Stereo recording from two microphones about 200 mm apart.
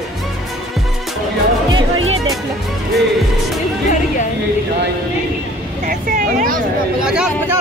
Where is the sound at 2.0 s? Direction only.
90° right.